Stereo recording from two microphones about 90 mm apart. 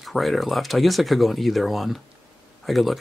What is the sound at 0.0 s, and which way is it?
Speech, centre (ahead or behind).